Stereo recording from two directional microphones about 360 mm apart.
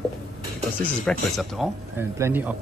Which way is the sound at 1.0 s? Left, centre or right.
Centre.